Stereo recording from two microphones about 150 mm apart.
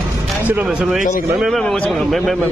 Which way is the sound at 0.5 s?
10° right (ahead or behind).